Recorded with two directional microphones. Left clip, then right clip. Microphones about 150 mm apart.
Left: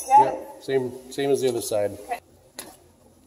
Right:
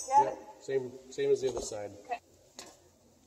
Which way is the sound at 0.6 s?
90° left.